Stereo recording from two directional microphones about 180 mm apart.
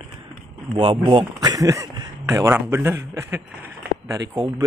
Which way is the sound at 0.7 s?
30° right (ahead or behind).